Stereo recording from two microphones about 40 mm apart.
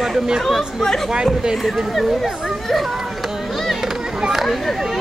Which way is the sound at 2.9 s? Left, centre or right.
Centre.